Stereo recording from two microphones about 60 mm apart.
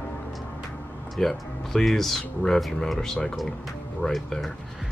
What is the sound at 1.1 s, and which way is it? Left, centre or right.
Speech, centre.